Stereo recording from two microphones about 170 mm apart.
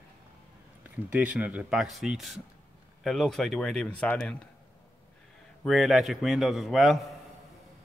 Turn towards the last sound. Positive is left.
turn(degrees=0)  # may be behind; listen again after turning